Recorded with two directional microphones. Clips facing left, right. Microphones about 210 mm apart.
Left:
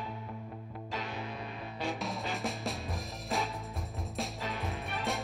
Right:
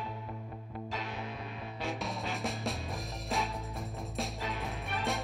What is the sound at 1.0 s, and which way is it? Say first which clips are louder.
Music: left 1 dB; centre (ahead or behind).